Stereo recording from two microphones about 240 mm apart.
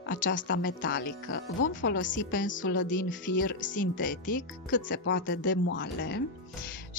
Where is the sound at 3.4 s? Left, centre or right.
Left.